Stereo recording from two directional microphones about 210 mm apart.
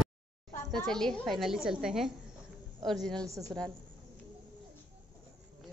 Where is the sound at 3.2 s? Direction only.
15° right (ahead or behind).